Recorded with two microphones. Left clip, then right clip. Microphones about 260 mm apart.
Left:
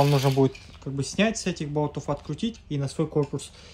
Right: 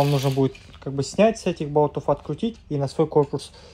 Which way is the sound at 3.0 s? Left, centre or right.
Centre.